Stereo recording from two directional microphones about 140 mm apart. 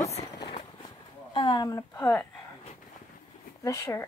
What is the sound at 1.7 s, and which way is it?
Speech, 20° left (ahead or behind).